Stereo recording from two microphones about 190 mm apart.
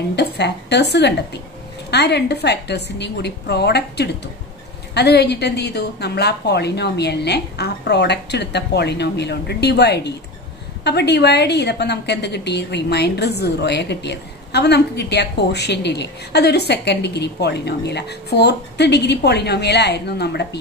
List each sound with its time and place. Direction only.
0.1 s a woman's voice: 65° left (ahead or behind)